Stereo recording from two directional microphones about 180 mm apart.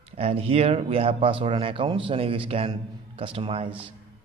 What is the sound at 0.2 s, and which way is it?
A man's voice, 35° right (ahead or behind).